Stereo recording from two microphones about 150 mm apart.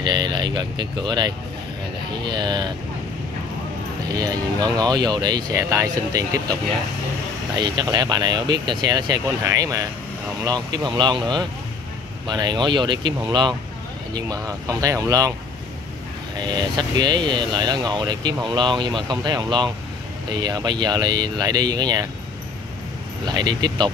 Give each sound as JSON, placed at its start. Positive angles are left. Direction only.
{"t": 0.0, "sound": "speech", "side_deg": -30}
{"t": 4.1, "sound": "speech", "side_deg": -25}
{"t": 16.3, "sound": "speech", "side_deg": -30}
{"t": 23.2, "sound": "speech", "side_deg": -30}